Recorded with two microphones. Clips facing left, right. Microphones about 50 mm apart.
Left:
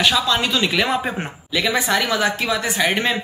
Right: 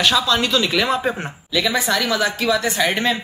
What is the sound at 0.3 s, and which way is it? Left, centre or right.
Speech, centre.